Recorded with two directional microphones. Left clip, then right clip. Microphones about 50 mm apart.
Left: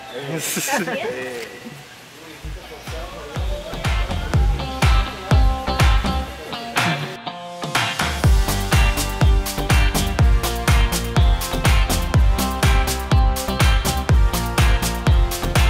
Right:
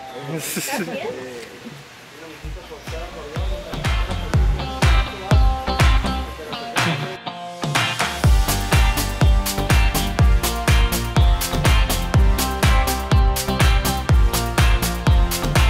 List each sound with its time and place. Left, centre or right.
0.3 s speech: right
4.3 s music: centre